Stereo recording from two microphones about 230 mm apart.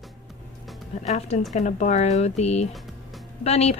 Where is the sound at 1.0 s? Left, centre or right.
Left.